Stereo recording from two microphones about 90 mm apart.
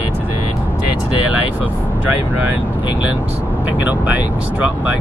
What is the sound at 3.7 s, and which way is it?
Speech, 15° right (ahead or behind).